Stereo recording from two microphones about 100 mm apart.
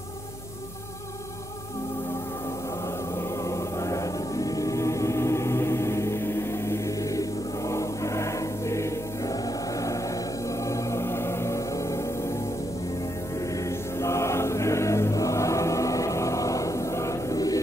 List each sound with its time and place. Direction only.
3.2 s music: 30° left (ahead or behind)
13.7 s chant: 30° left (ahead or behind)